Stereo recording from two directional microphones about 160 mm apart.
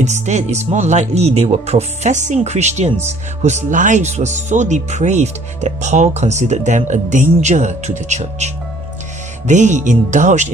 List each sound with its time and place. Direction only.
0.0 s speech: 45° right (ahead or behind)
9.5 s speech: 50° right (ahead or behind)